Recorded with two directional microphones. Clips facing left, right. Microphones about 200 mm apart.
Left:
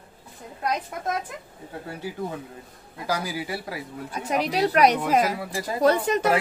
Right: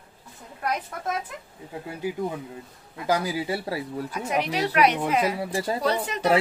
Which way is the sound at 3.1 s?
25° right (ahead or behind).